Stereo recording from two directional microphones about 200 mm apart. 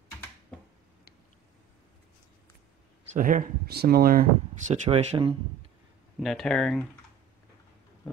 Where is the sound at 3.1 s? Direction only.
45° right (ahead or behind).